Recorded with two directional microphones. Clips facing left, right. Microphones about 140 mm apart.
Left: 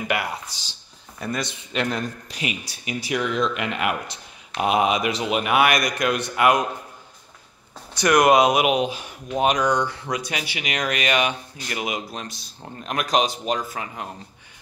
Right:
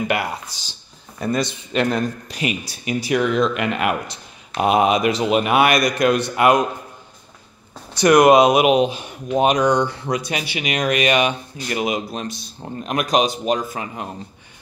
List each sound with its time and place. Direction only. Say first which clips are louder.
0.1 s speech: right 3 dB; 40° right (ahead or behind)
7.9 s speech: right 5 dB; 25° right (ahead or behind)